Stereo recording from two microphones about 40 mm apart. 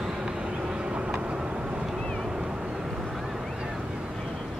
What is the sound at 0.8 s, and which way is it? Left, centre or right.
Vehicle, right.